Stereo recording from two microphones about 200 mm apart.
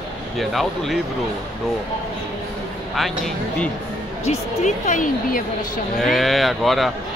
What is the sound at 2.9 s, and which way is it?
Speech, centre (ahead or behind).